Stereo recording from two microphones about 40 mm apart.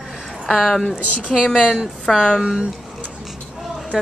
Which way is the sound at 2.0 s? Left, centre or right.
Centre.